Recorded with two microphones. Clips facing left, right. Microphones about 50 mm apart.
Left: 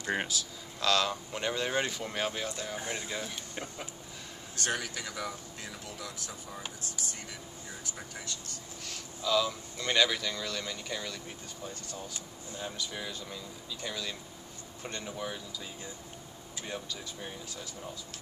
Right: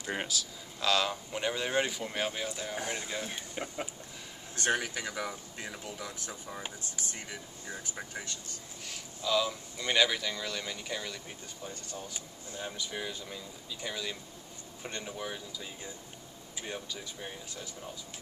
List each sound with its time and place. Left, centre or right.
0.1 s speech: centre
0.7 s speech: centre
4.6 s speech: centre
8.8 s speech: centre